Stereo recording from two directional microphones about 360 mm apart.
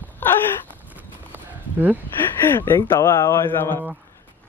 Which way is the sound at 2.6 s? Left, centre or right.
Centre.